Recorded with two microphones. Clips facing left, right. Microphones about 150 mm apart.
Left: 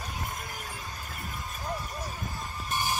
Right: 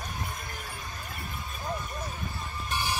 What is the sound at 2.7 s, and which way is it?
Music, 45° left (ahead or behind).